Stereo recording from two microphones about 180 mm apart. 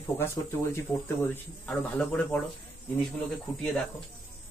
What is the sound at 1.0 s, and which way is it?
Speech, 10° left (ahead or behind).